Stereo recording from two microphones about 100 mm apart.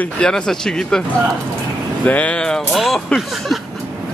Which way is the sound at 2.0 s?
15° left (ahead or behind).